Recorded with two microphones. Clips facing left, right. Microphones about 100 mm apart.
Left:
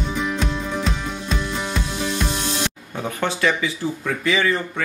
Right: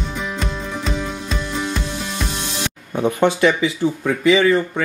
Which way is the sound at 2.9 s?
20° right (ahead or behind).